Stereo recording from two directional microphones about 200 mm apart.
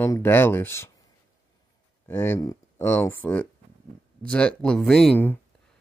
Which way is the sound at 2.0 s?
10° left (ahead or behind).